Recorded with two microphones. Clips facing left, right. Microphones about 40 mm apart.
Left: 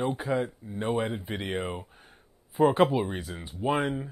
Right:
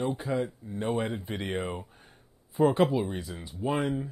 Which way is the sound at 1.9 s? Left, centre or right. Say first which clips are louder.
Left 1 dB; left.